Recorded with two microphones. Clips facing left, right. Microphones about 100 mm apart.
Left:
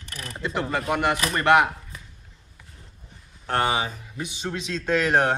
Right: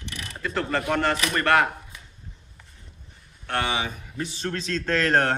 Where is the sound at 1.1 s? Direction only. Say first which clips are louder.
Even; 30° left (ahead or behind).